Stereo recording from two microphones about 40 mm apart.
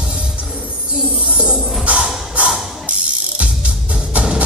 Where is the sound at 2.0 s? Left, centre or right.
Centre.